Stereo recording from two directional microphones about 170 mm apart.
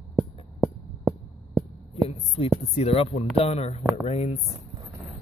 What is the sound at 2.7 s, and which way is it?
Speech, 35° left (ahead or behind).